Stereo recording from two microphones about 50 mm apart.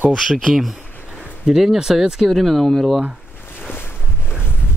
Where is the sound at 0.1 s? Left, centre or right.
Centre.